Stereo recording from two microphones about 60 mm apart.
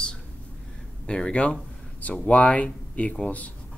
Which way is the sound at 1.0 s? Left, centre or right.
Centre.